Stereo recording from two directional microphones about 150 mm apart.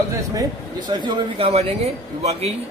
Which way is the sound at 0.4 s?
30° right (ahead or behind).